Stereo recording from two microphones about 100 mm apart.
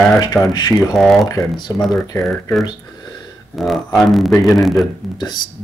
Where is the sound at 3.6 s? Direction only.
Centre (ahead or behind).